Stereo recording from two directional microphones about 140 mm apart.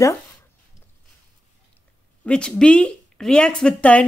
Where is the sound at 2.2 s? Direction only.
5° left (ahead or behind).